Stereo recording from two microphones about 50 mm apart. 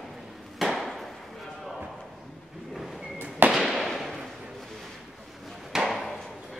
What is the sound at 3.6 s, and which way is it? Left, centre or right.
Fireworks, centre.